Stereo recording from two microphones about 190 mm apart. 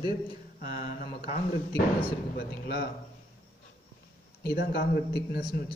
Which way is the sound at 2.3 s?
60° left (ahead or behind).